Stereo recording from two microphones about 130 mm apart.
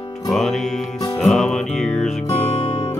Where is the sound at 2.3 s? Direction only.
20° left (ahead or behind).